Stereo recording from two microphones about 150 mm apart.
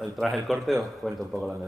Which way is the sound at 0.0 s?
Centre (ahead or behind).